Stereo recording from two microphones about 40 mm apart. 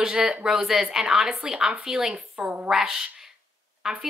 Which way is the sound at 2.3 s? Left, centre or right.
Right.